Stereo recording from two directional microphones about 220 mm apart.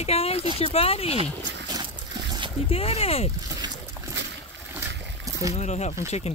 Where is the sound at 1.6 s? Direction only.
20° right (ahead or behind).